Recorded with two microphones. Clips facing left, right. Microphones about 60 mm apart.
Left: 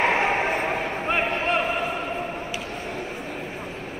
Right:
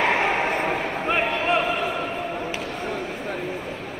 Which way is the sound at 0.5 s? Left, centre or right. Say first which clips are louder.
Right 1 dB; right.